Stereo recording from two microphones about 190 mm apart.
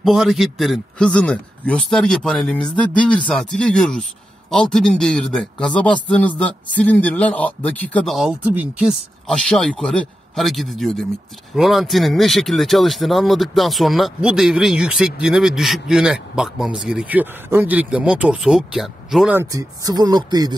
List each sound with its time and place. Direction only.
0.0 s a man's voice: centre (ahead or behind)
19.5 s speech: 20° right (ahead or behind)